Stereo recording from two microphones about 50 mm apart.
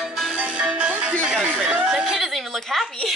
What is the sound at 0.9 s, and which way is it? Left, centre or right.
Speech, right.